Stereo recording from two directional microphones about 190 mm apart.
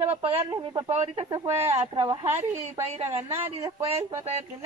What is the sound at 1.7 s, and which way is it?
Speech, 35° right (ahead or behind).